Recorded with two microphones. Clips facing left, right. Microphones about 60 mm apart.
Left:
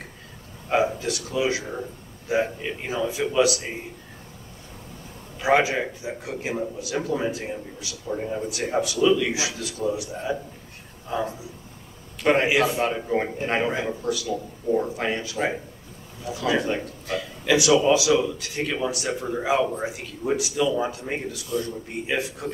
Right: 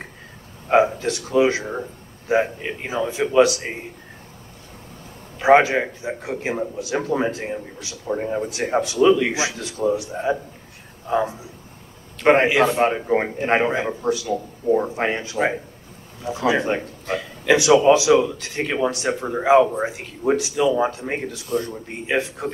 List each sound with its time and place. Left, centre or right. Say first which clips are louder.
0.7 s a sound: right 6 dB; right
1.0 s a man's voice: right 6 dB; right
5.4 s a man's voice: right 6 dB; right